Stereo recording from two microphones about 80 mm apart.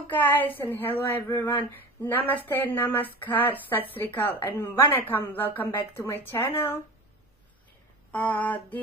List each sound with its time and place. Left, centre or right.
0.1 s speech: left
8.1 s speech: centre